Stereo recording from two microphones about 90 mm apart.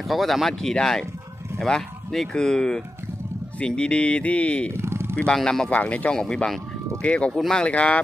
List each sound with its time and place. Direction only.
0.1 s speech: centre (ahead or behind)
4.7 s a sound: 30° right (ahead or behind)
5.1 s speech: 10° left (ahead or behind)